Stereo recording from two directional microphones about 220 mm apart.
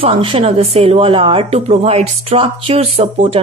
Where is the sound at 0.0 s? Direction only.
25° right (ahead or behind).